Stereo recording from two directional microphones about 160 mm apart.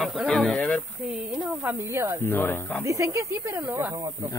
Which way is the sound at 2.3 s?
15° left (ahead or behind).